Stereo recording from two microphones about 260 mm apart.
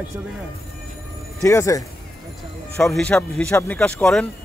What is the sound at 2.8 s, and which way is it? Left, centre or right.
Speech, centre.